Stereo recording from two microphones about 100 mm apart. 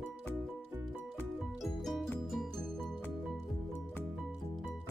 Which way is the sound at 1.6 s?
Centre (ahead or behind).